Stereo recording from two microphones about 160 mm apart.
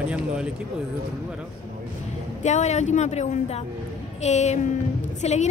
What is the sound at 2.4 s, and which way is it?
A woman's voice, 45° left (ahead or behind).